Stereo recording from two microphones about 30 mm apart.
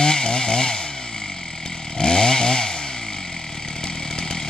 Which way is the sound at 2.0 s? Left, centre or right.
Left.